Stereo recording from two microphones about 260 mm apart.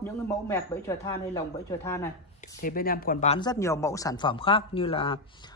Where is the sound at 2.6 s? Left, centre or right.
Left.